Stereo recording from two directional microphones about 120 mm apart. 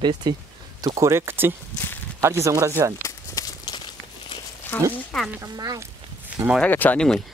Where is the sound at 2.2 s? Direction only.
25° right (ahead or behind).